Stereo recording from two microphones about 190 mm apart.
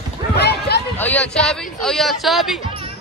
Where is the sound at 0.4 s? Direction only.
60° left (ahead or behind).